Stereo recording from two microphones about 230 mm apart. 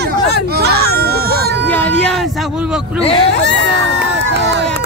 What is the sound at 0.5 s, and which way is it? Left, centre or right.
Baby cry, right.